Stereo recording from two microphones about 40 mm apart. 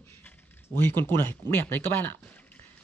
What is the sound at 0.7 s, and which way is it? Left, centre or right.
Speech, left.